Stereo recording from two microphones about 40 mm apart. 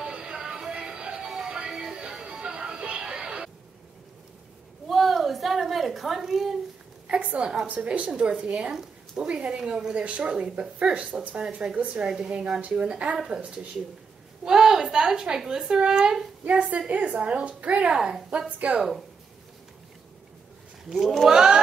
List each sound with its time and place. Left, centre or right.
0.0 s music: right
4.8 s a sound: centre
7.1 s a woman's voice: right
14.4 s a woman's voice: centre
16.4 s a woman's voice: right
17.9 s speech: centre
18.6 s a woman's voice: right
20.9 s speech: centre
21.3 s speech: centre